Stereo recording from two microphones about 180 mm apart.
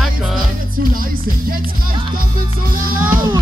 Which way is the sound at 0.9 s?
50° right (ahead or behind).